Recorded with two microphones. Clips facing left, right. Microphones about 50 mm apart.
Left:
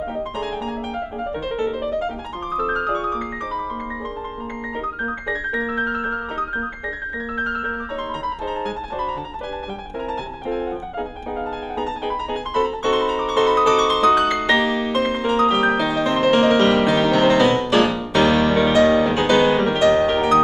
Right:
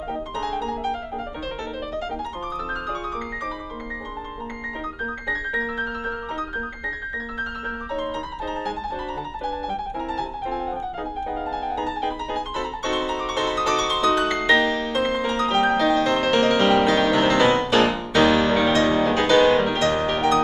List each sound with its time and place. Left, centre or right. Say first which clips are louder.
2.5 s music: left 10 dB; left
5.8 s piano: left 5 dB; left
11.8 s music: left 2 dB; centre